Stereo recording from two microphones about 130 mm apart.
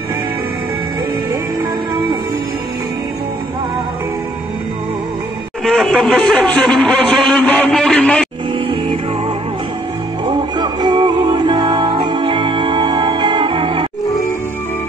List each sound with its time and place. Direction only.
5.7 s a man's voice: 5° left (ahead or behind)
10.2 s music: 35° right (ahead or behind)